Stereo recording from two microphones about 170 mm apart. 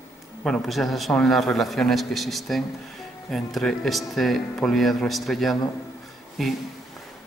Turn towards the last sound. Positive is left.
turn(degrees=0)  # may be behind; listen again after turning